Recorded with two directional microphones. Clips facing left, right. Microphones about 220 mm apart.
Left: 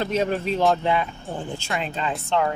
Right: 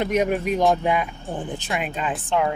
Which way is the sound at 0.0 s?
15° right (ahead or behind).